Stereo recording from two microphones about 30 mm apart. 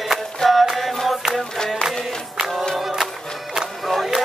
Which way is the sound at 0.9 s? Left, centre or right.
Centre.